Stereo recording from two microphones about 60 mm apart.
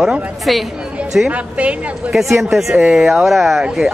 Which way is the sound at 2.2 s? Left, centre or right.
Right.